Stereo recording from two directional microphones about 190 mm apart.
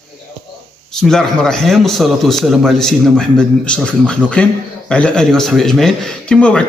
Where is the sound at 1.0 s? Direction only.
Centre (ahead or behind).